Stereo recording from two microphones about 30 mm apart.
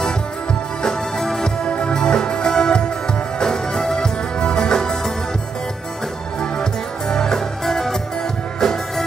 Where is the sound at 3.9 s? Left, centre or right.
Left.